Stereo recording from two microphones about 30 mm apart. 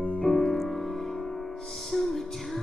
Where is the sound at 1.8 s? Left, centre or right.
Centre.